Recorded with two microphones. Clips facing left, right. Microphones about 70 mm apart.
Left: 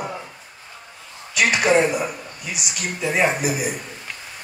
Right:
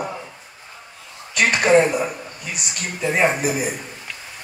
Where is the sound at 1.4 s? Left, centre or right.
Right.